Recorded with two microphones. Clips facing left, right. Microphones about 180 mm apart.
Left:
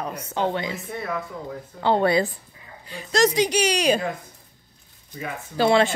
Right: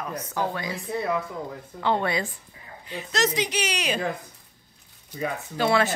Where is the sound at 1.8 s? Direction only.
35° left (ahead or behind).